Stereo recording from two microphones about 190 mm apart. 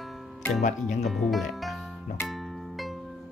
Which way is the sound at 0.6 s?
40° left (ahead or behind).